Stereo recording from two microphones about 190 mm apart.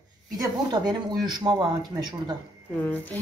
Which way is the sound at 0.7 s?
20° right (ahead or behind).